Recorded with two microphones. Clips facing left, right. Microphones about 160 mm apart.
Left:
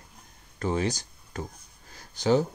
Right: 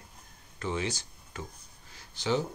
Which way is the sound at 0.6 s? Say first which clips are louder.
Left 5 dB; 40° left (ahead or behind).